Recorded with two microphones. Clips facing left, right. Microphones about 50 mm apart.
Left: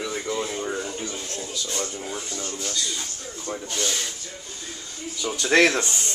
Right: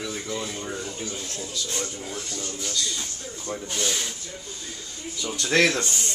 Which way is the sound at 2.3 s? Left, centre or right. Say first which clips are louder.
Left 1 dB; left.